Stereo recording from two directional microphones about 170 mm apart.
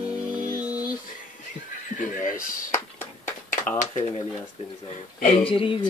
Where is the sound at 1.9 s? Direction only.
50° left (ahead or behind).